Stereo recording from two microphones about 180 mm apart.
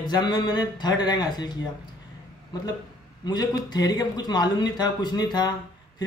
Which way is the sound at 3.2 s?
20° left (ahead or behind).